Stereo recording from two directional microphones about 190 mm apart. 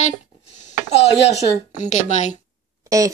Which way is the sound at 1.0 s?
35° left (ahead or behind).